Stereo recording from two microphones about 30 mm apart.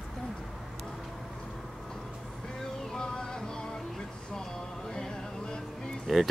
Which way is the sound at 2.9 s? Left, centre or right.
Left.